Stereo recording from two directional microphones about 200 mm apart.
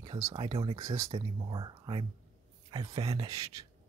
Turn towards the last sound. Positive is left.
turn(degrees=-15)  # may be behind; listen again after turning